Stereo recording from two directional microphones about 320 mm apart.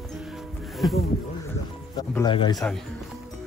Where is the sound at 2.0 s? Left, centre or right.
Centre.